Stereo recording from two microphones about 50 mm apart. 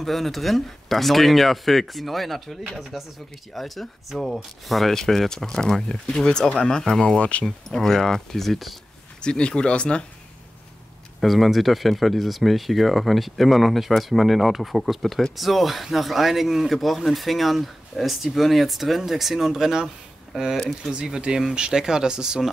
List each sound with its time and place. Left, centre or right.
0.0 s speech: centre
7.2 s speech: left
7.4 s speech: centre
9.2 s speech: centre
11.1 s speech: centre
20.9 s speech: centre